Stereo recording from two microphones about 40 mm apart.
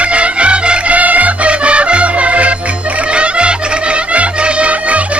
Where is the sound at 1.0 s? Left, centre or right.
Right.